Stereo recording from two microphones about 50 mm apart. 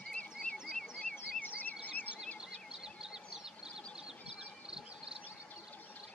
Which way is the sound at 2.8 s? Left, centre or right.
Centre.